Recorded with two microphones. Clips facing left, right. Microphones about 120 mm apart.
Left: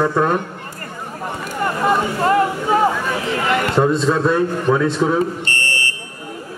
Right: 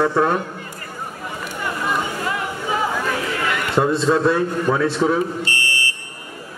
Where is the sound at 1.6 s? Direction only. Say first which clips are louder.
Left 6 dB; 50° left (ahead or behind).